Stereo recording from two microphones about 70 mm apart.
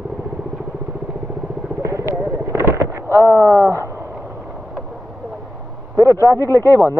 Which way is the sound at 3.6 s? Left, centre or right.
Right.